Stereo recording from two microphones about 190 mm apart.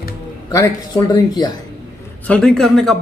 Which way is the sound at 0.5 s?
15° left (ahead or behind).